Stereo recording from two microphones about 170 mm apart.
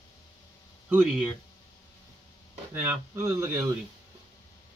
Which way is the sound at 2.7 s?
15° right (ahead or behind).